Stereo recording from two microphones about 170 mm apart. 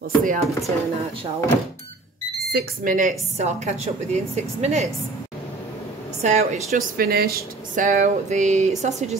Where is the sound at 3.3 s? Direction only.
40° right (ahead or behind).